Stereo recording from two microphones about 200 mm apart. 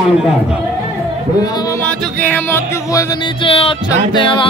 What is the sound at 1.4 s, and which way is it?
Music, 20° left (ahead or behind).